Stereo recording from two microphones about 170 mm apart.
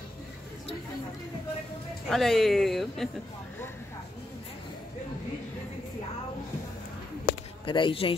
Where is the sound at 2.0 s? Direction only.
Centre (ahead or behind).